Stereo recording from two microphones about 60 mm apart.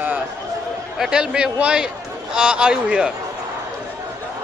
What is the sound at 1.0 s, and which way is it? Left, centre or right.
A man's voice, centre.